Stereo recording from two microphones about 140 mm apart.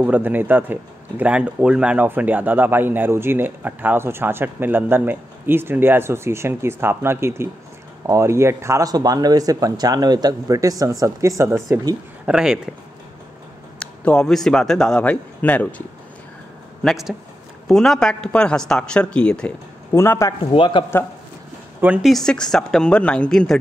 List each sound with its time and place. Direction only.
0.0 s a man's voice: 10° right (ahead or behind)
12.3 s a woman's voice: 5° right (ahead or behind)
13.7 s a man's voice: 5° left (ahead or behind)
16.8 s a woman's voice: centre (ahead or behind)
19.9 s speech: 20° left (ahead or behind)
20.5 s speech: 35° left (ahead or behind)
21.8 s a man's voice: 10° right (ahead or behind)
22.1 s a woman's voice: 5° left (ahead or behind)